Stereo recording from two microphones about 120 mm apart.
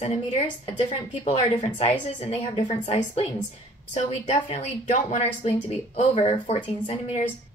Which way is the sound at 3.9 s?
85° left.